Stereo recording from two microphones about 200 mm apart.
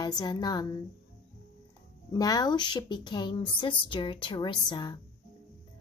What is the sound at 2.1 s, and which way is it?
A woman's voice, 20° left (ahead or behind).